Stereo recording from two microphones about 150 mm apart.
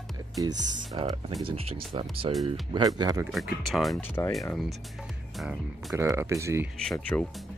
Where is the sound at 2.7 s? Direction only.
25° right (ahead or behind).